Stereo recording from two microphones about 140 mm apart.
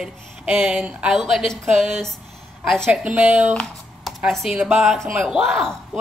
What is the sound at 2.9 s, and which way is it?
Speech, 10° right (ahead or behind).